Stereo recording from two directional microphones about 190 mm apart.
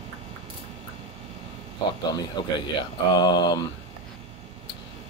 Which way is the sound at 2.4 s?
25° left (ahead or behind).